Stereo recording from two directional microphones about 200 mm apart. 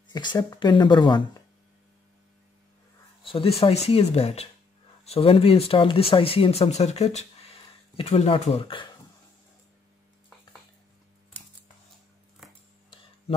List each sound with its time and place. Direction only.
0.1 s speech: 20° left (ahead or behind)
3.3 s speech: 30° left (ahead or behind)